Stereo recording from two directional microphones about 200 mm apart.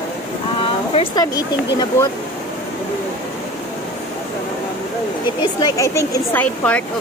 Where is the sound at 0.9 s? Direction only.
20° left (ahead or behind).